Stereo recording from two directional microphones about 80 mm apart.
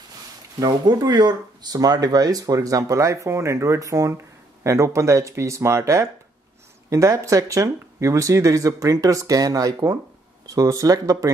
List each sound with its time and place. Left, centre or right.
0.6 s speech: right